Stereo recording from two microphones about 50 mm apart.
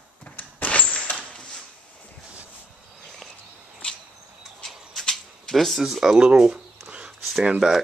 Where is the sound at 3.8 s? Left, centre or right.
Left.